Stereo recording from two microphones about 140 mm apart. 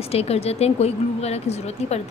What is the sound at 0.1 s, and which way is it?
Speech, 50° left (ahead or behind).